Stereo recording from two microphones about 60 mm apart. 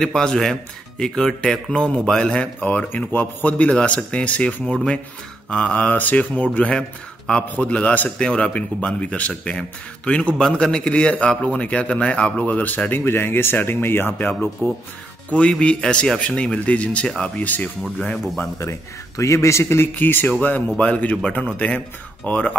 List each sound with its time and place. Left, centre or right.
0.0 s a man's voice: centre
3.1 s mantra: left
8.2 s a man's voice: centre
13.0 s speech: left
15.2 s a man's voice: centre
16.2 s mantra: left
17.8 s a man's voice: centre
18.6 s speech: left
20.0 s speech: left
20.6 s mantra: centre